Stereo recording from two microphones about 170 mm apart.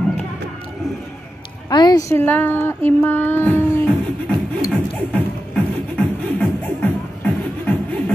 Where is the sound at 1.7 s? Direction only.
25° left (ahead or behind).